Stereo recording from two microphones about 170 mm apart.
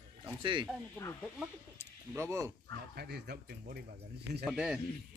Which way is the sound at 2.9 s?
70° right (ahead or behind).